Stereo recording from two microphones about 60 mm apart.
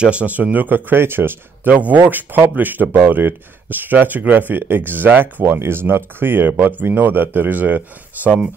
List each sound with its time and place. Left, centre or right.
0.0 s speech: right